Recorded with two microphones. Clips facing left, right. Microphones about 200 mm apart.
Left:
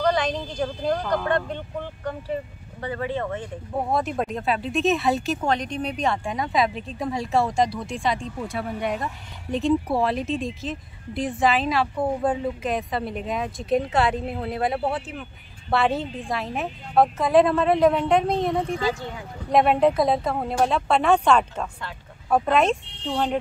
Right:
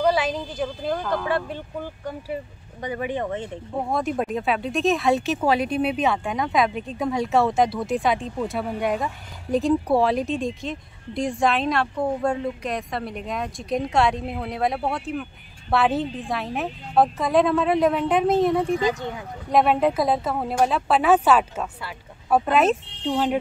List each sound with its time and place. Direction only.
0.0 s speech: 5° right (ahead or behind)
2.8 s speech: 15° right (ahead or behind)
3.9 s speech: centre (ahead or behind)
18.8 s speech: 20° right (ahead or behind)
19.5 s speech: centre (ahead or behind)